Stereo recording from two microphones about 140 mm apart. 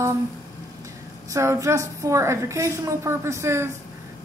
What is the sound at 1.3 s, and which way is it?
A woman's voice, 20° right (ahead or behind).